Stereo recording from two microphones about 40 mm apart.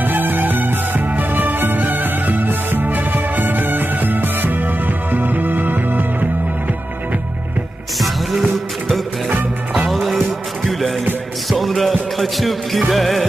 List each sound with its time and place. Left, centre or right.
0.0 s music: right
8.0 s music: centre
9.8 s music: centre